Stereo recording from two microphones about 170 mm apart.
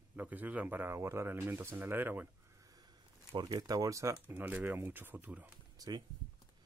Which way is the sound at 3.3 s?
20° right (ahead or behind).